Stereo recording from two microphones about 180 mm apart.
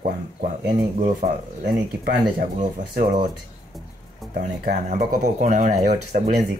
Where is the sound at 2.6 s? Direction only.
50° right (ahead or behind).